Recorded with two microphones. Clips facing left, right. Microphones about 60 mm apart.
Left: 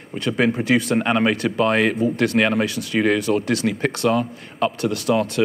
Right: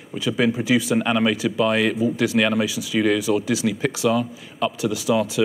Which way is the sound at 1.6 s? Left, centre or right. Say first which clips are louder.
Left 2 dB; centre.